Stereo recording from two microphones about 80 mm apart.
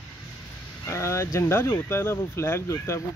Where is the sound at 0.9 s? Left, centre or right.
Left.